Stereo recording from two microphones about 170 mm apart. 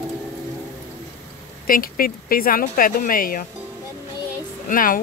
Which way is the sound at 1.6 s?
55° left (ahead or behind).